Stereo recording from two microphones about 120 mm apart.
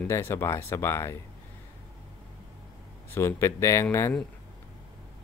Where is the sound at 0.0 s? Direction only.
20° left (ahead or behind).